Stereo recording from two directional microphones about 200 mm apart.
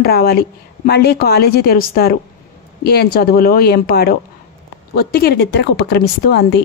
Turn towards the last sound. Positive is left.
turn(degrees=50)  # may be behind; listen again after turning